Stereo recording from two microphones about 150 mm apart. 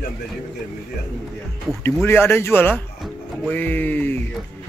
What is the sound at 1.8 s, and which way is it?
Speech, 15° left (ahead or behind).